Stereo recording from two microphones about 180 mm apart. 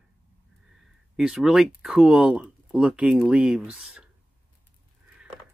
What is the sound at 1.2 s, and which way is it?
Speech, centre (ahead or behind).